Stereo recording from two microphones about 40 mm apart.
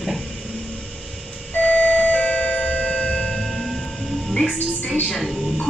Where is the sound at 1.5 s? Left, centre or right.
Left.